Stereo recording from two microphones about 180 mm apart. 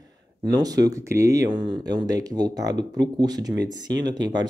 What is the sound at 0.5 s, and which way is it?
Speech, 20° right (ahead or behind).